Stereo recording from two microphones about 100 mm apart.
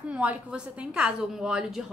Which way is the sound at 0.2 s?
10° right (ahead or behind).